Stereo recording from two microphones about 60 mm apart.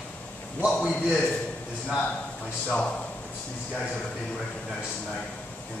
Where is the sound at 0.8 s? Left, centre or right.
Centre.